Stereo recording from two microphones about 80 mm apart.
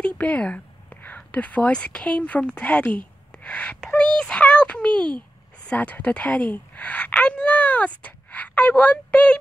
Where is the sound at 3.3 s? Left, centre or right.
Centre.